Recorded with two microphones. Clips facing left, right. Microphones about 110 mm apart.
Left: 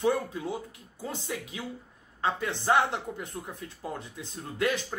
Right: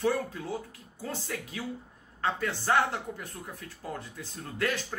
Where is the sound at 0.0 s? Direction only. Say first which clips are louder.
Left 2 dB; 20° left (ahead or behind).